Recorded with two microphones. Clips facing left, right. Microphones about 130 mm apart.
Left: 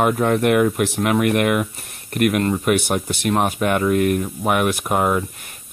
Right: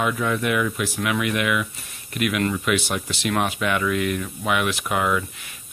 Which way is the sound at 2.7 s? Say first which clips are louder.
Left 5 dB; 50° left (ahead or behind).